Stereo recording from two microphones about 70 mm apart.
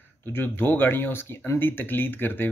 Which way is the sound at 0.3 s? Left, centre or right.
Left.